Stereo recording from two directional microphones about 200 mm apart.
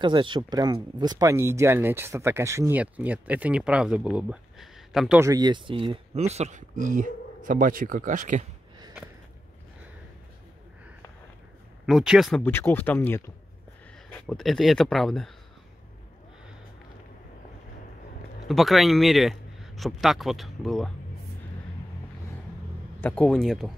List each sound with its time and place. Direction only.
0.0 s speech: 25° right (ahead or behind); by 5.2 s centre (ahead or behind)
5.2 s speech: 20° right (ahead or behind); by 8.5 s 40° right (ahead or behind)
11.8 s speech: 5° right (ahead or behind)
18.5 s speech: centre (ahead or behind)
22.9 s speech: 5° left (ahead or behind)